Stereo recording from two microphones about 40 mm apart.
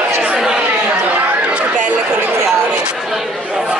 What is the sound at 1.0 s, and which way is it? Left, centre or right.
Chatter, right.